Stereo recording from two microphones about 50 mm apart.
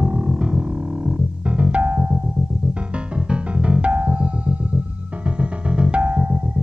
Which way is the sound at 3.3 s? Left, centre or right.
Right.